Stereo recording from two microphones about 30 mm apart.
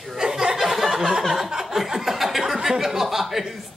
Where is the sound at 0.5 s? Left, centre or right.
Centre.